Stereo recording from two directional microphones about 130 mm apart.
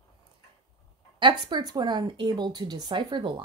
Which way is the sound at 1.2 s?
35° right (ahead or behind).